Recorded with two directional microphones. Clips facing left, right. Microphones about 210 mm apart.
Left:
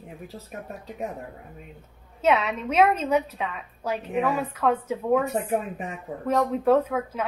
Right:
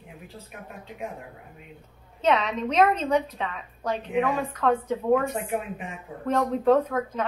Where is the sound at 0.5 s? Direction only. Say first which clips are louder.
Left 4 dB; 40° left (ahead or behind).